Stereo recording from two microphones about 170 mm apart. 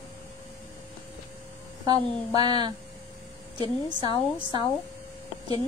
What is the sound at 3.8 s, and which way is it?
Speech, 25° right (ahead or behind).